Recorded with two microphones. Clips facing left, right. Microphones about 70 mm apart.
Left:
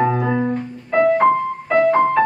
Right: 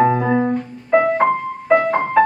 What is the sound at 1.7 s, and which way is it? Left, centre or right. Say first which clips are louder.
Music: even; centre.